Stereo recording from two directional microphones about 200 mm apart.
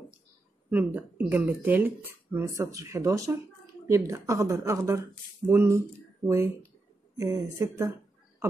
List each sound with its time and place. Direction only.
0.7 s speech: 10° right (ahead or behind)